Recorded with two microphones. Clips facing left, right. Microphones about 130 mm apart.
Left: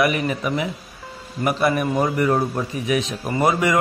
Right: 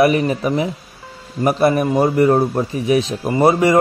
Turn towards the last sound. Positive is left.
turn(degrees=-30)  # may be behind; listen again after turning